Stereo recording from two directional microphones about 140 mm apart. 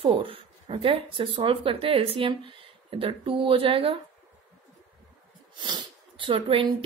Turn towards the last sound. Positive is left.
turn(degrees=-40)  # may be behind; listen again after turning